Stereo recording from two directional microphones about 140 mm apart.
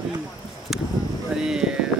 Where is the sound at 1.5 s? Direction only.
5° right (ahead or behind).